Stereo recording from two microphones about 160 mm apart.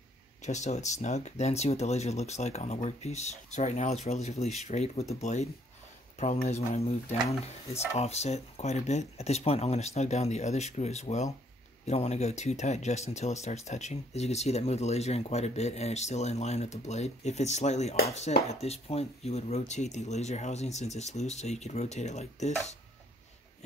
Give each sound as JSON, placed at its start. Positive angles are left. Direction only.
{"t": 0.4, "sound": "speech", "side_deg": 45}